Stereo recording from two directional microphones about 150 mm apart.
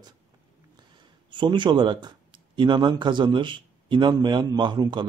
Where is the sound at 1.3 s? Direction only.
30° right (ahead or behind).